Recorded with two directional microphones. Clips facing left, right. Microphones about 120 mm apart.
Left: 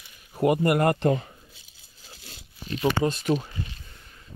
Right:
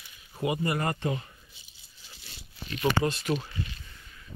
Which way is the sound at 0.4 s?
55° left (ahead or behind).